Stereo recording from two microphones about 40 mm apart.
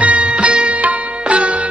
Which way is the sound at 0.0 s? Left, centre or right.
Right.